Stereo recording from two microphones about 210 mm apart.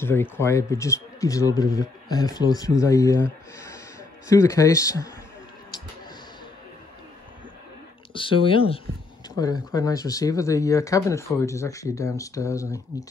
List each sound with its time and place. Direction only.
0.0 s speech: 10° left (ahead or behind)
8.1 s speech: 25° left (ahead or behind)